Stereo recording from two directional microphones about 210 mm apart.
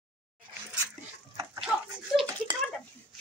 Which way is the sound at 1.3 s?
15° right (ahead or behind).